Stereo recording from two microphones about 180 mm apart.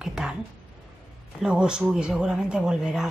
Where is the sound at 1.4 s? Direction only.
5° right (ahead or behind).